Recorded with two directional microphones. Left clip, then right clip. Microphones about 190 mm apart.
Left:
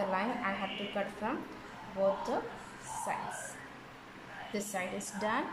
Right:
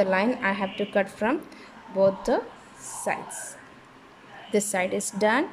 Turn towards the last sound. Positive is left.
turn(degrees=-50)  # may be behind; listen again after turning